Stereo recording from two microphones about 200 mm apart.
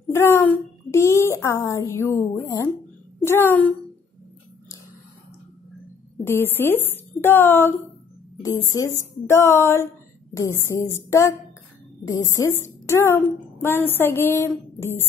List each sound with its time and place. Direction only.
0.1 s a woman's voice: 10° left (ahead or behind)
6.2 s a woman's voice: 10° left (ahead or behind)
8.6 s speech: 90° left
8.9 s a woman's voice: 15° left (ahead or behind)